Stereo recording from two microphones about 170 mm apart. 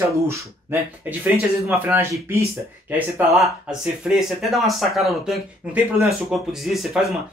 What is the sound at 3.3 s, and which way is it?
Speech, centre (ahead or behind).